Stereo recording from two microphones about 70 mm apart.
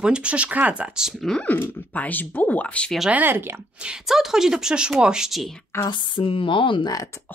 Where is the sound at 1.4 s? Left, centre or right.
Left.